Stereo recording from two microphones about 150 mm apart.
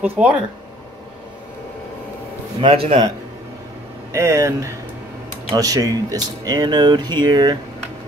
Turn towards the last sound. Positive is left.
turn(degrees=-30)  # may be behind; listen again after turning